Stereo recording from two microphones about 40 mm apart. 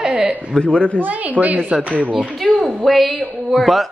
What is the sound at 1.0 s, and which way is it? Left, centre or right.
A child's voice, right.